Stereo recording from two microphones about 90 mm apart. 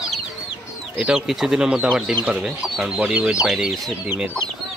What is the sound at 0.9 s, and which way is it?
Speech, 10° right (ahead or behind).